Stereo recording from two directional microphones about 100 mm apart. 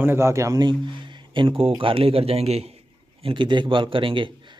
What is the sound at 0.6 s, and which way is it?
Speech, 50° right (ahead or behind).